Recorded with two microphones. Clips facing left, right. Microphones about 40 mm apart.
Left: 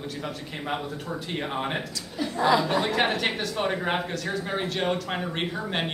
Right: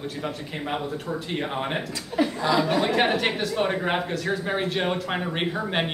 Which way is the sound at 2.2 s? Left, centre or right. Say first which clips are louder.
Right 7 dB; right.